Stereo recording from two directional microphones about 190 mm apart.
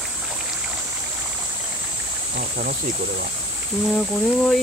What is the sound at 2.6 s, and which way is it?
Speech, 50° right (ahead or behind).